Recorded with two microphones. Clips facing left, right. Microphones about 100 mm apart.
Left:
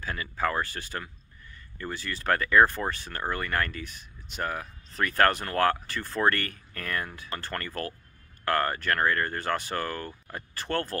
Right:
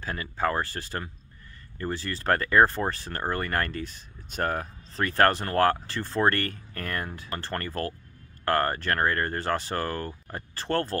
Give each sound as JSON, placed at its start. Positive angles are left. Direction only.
{"t": 0.0, "sound": "speech", "side_deg": -30}